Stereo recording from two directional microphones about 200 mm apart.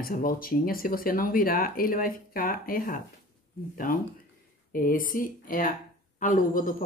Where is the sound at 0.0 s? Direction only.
45° left (ahead or behind).